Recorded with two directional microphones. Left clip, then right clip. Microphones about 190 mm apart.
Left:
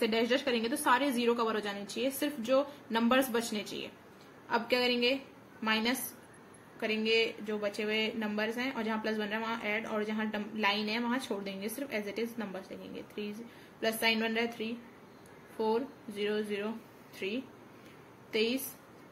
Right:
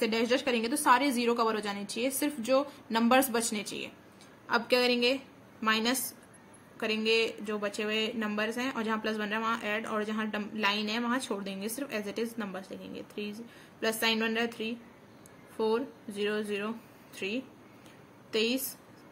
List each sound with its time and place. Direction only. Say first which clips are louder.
0.0 s a woman's voice: right 1 dB; 30° right (ahead or behind)